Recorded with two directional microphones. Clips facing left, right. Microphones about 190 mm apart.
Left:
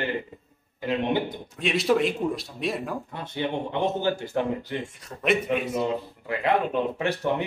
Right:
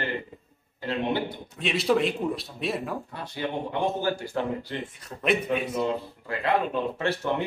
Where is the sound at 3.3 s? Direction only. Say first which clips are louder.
Left 2 dB; 20° left (ahead or behind).